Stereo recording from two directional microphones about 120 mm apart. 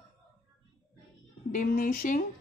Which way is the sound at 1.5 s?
90° left.